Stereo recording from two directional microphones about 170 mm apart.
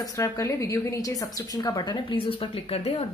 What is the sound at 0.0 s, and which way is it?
A woman's voice, 20° left (ahead or behind).